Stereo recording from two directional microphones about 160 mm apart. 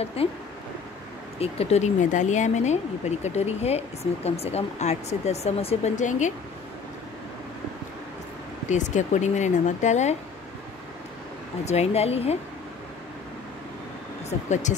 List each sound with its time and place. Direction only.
0.0 s speech: 40° left (ahead or behind)
1.4 s speech: 40° left (ahead or behind)
8.6 s speech: 50° left (ahead or behind)
11.6 s speech: 40° left (ahead or behind)